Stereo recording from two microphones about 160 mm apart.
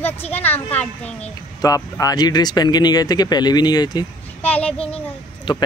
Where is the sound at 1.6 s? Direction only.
20° left (ahead or behind).